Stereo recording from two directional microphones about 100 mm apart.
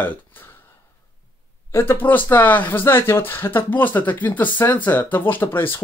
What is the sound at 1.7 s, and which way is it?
Speech, 20° left (ahead or behind).